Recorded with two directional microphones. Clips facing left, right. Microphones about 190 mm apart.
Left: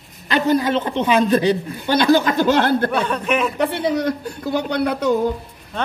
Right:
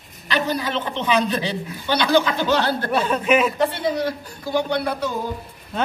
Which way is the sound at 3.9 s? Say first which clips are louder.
Left 4 dB; 60° left (ahead or behind).